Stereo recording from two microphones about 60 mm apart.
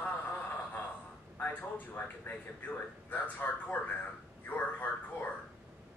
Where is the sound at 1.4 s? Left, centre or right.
Left.